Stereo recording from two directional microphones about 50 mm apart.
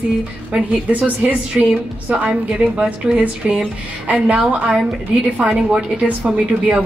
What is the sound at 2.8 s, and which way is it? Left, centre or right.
A woman's voice, right.